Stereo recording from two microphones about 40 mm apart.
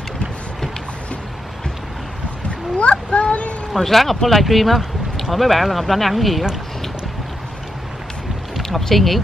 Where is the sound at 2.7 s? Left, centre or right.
Left.